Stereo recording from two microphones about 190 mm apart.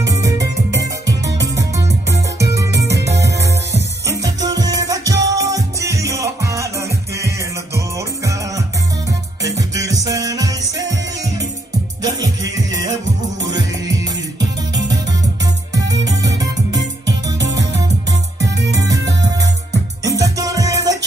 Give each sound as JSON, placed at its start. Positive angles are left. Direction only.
{"t": 0.0, "sound": "music", "side_deg": -15}
{"t": 3.0, "sound": "music", "side_deg": -65}
{"t": 4.0, "sound": "music", "side_deg": -15}
{"t": 12.0, "sound": "music", "side_deg": -20}
{"t": 15.9, "sound": "music", "side_deg": -20}
{"t": 18.7, "sound": "music", "side_deg": -20}